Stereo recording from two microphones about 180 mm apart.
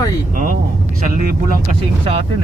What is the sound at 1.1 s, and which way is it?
Speech, 50° right (ahead or behind).